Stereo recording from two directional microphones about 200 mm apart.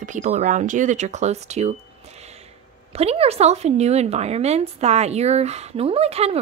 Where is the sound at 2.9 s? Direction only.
30° right (ahead or behind).